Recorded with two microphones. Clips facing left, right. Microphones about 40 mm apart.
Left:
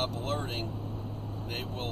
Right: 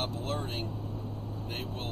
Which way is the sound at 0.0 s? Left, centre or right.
Left.